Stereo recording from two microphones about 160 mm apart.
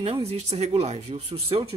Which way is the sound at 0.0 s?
40° right (ahead or behind).